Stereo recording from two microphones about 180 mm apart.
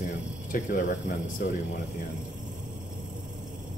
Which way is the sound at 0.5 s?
45° left (ahead or behind).